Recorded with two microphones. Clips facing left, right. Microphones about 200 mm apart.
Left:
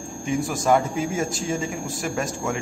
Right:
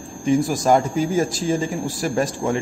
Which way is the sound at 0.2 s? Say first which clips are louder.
Right 6 dB; 35° right (ahead or behind).